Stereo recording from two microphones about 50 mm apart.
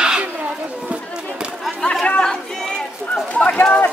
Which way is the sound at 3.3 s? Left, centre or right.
Left.